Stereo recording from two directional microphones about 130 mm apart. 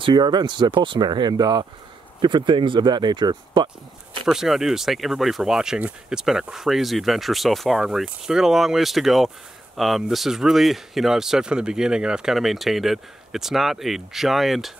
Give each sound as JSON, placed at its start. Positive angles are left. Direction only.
{"t": 0.0, "sound": "speech", "side_deg": -35}
{"t": 4.3, "sound": "speech", "side_deg": -5}